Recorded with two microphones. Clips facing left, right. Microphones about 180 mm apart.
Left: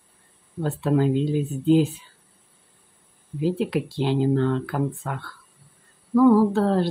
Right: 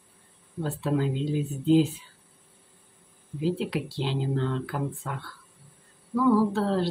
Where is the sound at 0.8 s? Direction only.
55° left (ahead or behind).